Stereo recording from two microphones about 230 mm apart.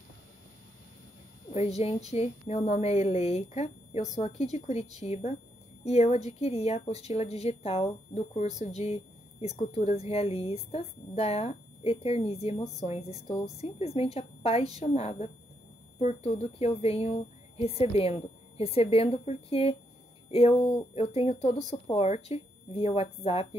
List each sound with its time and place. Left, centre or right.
1.5 s a woman's voice: left